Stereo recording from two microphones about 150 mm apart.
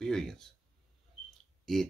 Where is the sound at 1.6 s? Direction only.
5° left (ahead or behind).